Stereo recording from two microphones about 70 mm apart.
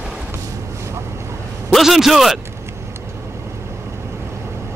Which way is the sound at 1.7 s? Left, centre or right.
Centre.